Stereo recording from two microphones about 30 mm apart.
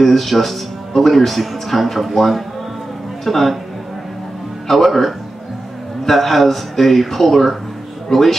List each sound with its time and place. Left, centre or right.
0.0 s a man's voice: centre
4.6 s a man's voice: centre